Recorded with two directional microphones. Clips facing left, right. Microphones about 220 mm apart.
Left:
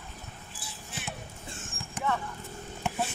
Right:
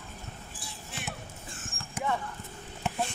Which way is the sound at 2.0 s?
10° right (ahead or behind).